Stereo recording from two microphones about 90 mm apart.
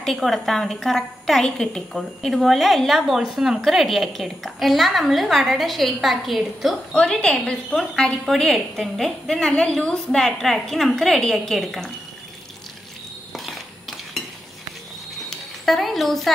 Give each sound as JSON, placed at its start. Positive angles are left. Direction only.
{"t": 0.0, "sound": "a woman's voice", "side_deg": 0}
{"t": 6.9, "sound": "a woman's voice", "side_deg": 10}
{"t": 13.3, "sound": "cutlery", "side_deg": 0}
{"t": 15.2, "sound": "a sound", "side_deg": 0}